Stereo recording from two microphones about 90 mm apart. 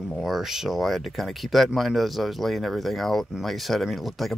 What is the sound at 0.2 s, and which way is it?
Speech, 5° right (ahead or behind).